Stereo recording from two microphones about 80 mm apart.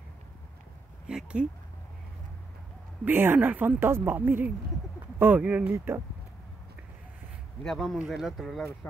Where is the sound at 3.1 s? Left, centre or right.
Right.